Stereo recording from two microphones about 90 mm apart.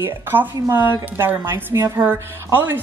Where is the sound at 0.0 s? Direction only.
25° right (ahead or behind).